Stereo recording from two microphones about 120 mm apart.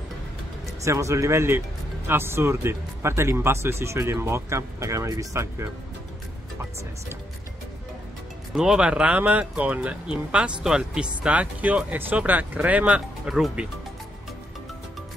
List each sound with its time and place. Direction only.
0.8 s speech: 25° right (ahead or behind)
8.5 s speech: 5° right (ahead or behind)